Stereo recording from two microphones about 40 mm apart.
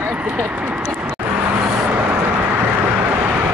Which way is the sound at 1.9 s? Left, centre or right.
Right.